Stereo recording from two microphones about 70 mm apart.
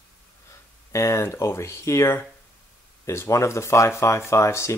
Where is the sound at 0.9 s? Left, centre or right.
Left.